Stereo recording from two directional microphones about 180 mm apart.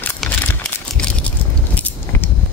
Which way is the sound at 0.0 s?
10° left (ahead or behind).